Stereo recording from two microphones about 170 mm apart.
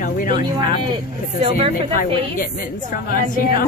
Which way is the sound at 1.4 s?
35° right (ahead or behind).